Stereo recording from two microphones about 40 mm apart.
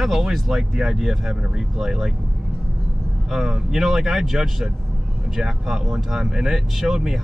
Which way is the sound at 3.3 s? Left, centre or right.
Centre.